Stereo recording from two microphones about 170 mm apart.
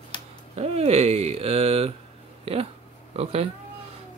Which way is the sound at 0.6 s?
35° right (ahead or behind).